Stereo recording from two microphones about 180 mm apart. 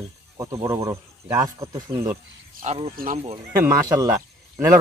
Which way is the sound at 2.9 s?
50° right (ahead or behind).